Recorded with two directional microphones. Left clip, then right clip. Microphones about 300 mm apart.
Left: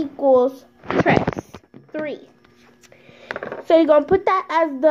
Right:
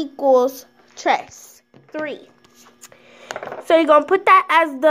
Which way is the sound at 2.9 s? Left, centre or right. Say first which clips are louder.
Left 1 dB; centre.